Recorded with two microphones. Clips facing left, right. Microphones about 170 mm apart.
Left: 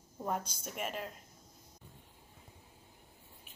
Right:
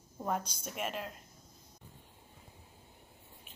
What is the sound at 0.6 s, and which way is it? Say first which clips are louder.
Speech: right 1 dB; centre (ahead or behind).